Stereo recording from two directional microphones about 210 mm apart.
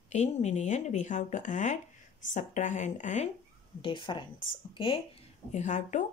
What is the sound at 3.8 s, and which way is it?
Speech, 20° left (ahead or behind).